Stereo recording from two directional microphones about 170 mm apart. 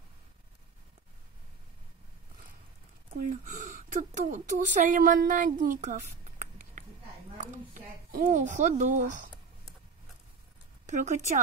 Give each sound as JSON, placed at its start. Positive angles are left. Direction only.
{"t": 3.2, "sound": "speech", "side_deg": -50}
{"t": 10.9, "sound": "speech", "side_deg": -45}